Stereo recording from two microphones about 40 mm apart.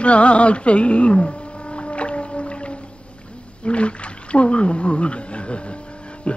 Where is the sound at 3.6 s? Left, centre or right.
Left.